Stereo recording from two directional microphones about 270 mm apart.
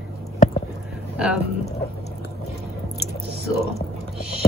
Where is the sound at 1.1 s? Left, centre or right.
Centre.